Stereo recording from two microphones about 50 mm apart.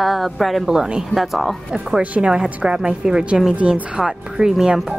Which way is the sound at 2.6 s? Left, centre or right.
Centre.